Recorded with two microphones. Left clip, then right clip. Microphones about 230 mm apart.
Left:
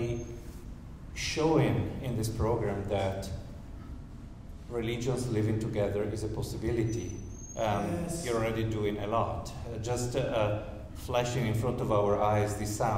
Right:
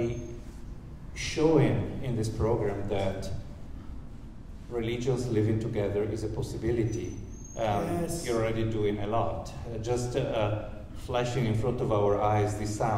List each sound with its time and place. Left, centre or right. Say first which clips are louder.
1.1 s a man's voice: right 3 dB; left
4.7 s a man's voice: right 2 dB; left